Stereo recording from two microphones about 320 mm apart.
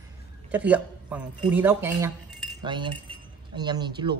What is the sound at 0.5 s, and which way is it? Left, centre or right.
A woman's voice, centre.